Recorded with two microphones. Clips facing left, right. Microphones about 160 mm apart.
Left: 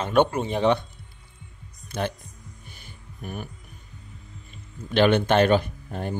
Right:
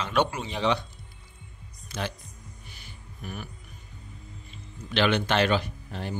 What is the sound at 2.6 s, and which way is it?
Hum, 50° left (ahead or behind).